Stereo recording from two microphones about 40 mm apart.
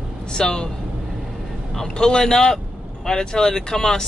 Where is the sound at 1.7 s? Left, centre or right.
Centre.